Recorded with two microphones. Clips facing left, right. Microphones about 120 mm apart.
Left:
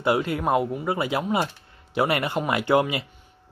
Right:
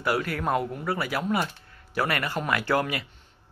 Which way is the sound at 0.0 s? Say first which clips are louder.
Left 4 dB; 20° left (ahead or behind).